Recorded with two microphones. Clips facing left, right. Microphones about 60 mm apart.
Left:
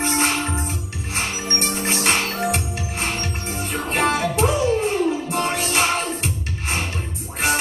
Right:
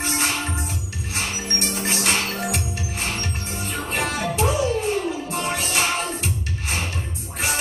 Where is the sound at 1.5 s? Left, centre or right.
Left.